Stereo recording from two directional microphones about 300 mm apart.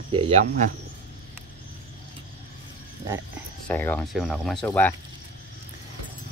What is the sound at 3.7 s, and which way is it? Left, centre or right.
Speech, centre.